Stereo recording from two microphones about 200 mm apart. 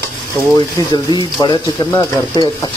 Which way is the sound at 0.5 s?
20° left (ahead or behind).